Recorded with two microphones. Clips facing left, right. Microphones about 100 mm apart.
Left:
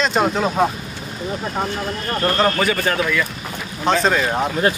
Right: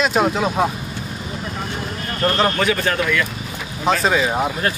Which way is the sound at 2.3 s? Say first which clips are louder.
Even; centre (ahead or behind).